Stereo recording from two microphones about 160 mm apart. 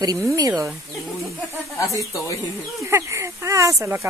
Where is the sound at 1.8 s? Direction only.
20° left (ahead or behind).